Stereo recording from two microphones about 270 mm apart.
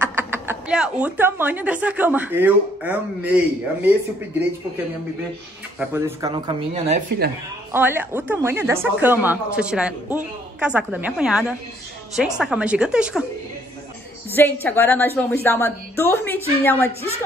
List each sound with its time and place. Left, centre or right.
0.0 s a woman's voice: centre
7.7 s a woman's voice: centre
14.3 s a woman's voice: centre